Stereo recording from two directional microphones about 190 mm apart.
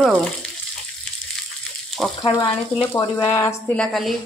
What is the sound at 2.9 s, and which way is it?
Speech, 15° left (ahead or behind).